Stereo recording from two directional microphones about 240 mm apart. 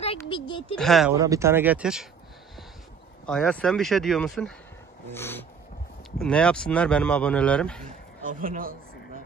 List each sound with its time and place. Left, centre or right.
0.0 s speech: left
0.7 s speech: centre
1.1 s speech: centre
3.3 s speech: centre
5.1 s a sound: centre
6.2 s speech: centre
8.2 s speech: right